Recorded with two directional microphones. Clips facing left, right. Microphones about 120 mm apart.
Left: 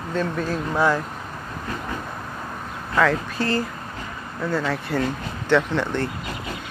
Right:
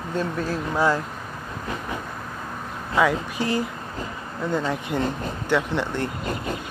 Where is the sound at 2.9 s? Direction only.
15° right (ahead or behind).